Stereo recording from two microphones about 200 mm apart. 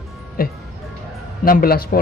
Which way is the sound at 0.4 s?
50° left (ahead or behind).